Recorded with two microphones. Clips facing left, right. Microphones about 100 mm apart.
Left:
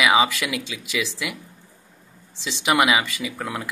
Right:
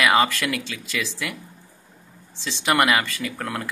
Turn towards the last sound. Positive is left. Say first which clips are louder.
# even
turn(degrees=5)  # may be behind; listen again after turning